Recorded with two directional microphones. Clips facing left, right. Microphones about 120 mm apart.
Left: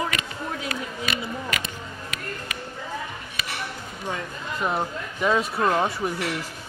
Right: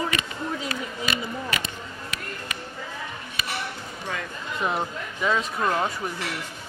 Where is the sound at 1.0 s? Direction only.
30° right (ahead or behind).